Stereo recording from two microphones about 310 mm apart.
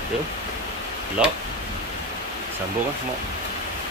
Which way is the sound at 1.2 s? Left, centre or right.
Centre.